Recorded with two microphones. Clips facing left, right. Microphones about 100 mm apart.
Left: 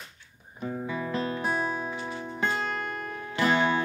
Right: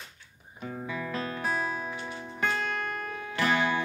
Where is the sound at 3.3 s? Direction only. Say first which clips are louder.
Left 3 dB; 20° left (ahead or behind).